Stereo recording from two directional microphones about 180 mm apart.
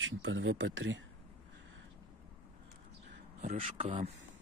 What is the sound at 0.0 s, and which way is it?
Speech, 90° right.